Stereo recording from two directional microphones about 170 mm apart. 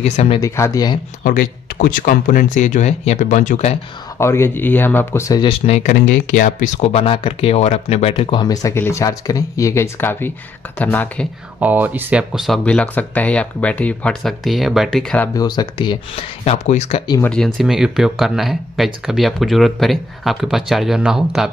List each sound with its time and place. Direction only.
0.0 s speech: 40° left (ahead or behind)
0.4 s speech: 20° left (ahead or behind)
1.2 s speech: 55° left (ahead or behind)
4.2 s speech: 15° left (ahead or behind)
5.5 s speech: 40° left (ahead or behind); by 11.2 s 10° left (ahead or behind)
11.6 s speech: 10° right (ahead or behind)
15.3 s speech: 25° left (ahead or behind); by 17.0 s 40° left (ahead or behind)
17.2 s speech: 5° left (ahead or behind)